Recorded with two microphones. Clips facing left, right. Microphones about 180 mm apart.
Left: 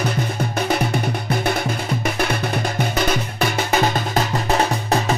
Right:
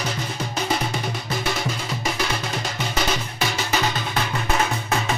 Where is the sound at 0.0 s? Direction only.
55° left (ahead or behind).